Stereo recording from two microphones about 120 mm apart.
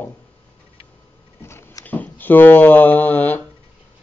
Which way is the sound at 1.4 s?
20° left (ahead or behind).